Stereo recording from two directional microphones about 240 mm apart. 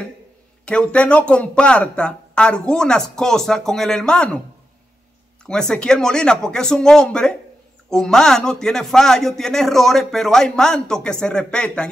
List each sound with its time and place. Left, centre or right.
0.7 s a man's voice: centre
5.4 s a man's voice: centre